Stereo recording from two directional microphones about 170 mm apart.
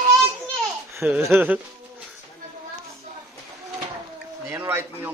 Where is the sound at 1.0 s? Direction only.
10° right (ahead or behind).